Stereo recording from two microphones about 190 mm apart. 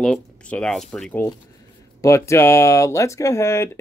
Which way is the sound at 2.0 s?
15° left (ahead or behind).